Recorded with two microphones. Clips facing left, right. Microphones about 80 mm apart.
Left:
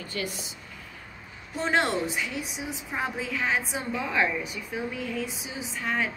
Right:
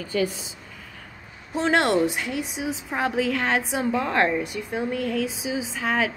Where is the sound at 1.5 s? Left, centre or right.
Right.